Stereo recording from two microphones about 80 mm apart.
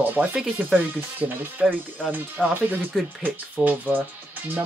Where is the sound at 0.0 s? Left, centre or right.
Right.